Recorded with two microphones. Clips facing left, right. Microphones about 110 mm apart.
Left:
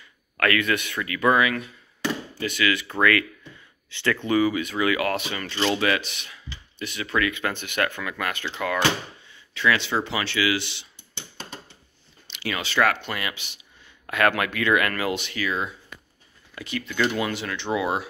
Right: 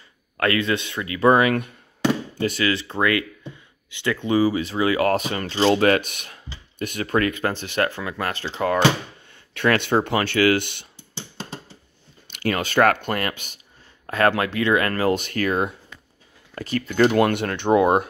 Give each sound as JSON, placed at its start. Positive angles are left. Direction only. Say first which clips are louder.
{"t": 0.4, "sound": "speech", "louder": "right 2 dB", "side_deg": -25}
{"t": 1.3, "sound": "speech", "louder": "right 4 dB", "side_deg": -50}
{"t": 2.4, "sound": "speech", "louder": "right 2 dB", "side_deg": -35}
{"t": 4.4, "sound": "speech", "louder": "right 2 dB", "side_deg": -30}
{"t": 9.3, "sound": "speech", "louder": "right 3 dB", "side_deg": -55}
{"t": 12.3, "sound": "speech", "louder": "right 6 dB", "side_deg": -45}
{"t": 14.0, "sound": "speech", "louder": "right 3 dB", "side_deg": -35}